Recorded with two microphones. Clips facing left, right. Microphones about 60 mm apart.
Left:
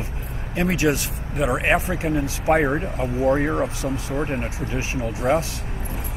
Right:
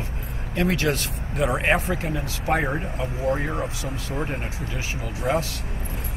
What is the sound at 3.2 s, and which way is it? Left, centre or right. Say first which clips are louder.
Speech: left 5 dB; left.